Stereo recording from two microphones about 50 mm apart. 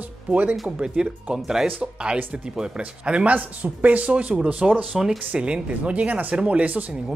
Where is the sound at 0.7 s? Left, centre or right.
Centre.